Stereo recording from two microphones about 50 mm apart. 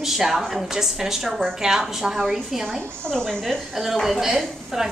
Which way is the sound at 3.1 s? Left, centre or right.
Centre.